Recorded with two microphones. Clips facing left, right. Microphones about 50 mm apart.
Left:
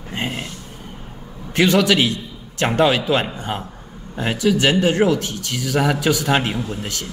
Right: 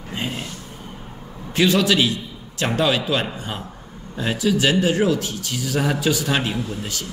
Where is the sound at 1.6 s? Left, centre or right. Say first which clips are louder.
Left 2 dB; left.